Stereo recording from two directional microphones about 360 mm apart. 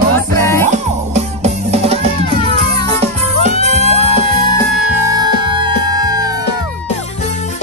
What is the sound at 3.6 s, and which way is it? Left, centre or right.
Music, centre.